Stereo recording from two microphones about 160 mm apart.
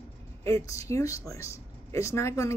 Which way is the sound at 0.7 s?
20° left (ahead or behind).